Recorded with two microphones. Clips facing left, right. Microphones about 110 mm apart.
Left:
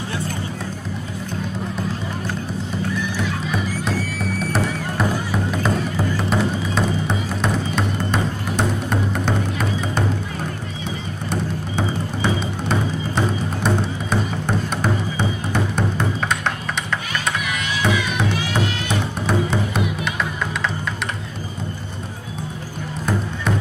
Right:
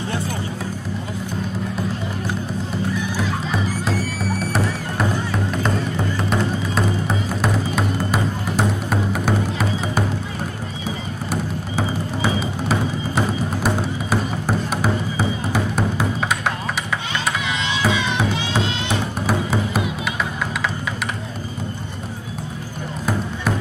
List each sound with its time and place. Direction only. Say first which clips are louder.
3.5 s music: right 1 dB; centre (ahead or behind)
11.2 s music: left 1 dB; 5° right (ahead or behind)
17.5 s music: even; 25° right (ahead or behind)
19.2 s music: left 1 dB; 5° right (ahead or behind)